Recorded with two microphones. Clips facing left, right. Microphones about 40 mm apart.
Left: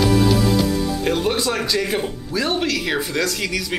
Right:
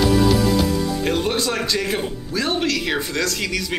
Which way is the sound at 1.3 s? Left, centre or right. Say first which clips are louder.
Left 1 dB; centre.